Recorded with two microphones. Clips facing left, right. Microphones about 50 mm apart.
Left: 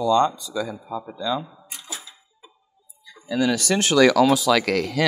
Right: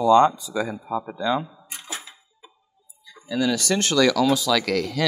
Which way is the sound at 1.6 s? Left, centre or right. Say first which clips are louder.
Right 2 dB; right.